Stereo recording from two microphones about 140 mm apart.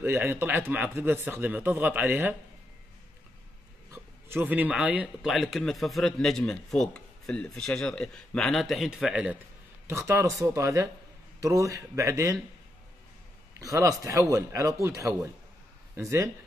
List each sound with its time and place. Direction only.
0.0 s speech: 15° right (ahead or behind)
3.9 s speech: 15° right (ahead or behind)
9.8 s speech: 20° right (ahead or behind)
13.6 s speech: 25° right (ahead or behind)